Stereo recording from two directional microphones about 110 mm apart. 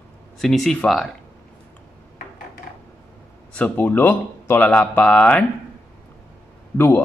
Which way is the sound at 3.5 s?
15° left (ahead or behind).